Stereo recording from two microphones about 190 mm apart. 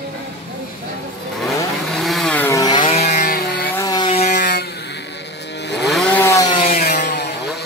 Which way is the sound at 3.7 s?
20° left (ahead or behind).